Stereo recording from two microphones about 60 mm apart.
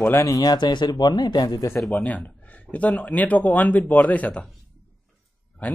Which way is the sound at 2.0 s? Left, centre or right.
Left.